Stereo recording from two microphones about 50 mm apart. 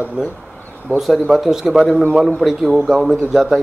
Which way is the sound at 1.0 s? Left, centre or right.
Centre.